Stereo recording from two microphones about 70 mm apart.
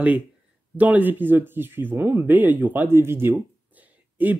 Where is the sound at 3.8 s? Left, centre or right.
Right.